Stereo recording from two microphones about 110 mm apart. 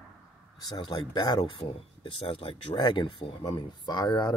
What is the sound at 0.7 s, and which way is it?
Speech, 45° left (ahead or behind).